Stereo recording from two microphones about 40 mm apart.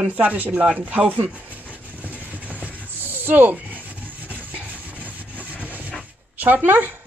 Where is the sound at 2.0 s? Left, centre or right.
Right.